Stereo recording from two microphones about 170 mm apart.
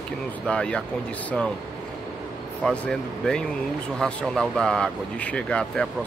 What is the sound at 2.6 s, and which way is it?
Speech, 5° left (ahead or behind).